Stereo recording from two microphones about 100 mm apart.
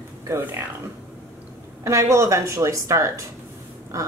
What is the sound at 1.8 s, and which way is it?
A woman's voice, 30° right (ahead or behind).